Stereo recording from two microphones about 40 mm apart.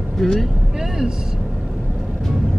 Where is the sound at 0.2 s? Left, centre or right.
Centre.